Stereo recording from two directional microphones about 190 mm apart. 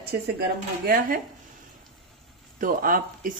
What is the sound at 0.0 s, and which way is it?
Speech, 50° right (ahead or behind).